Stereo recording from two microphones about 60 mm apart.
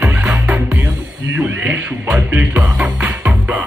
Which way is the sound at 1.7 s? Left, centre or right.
Right.